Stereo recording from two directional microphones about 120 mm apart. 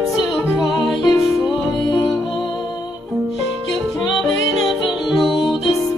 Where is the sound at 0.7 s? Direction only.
Centre (ahead or behind).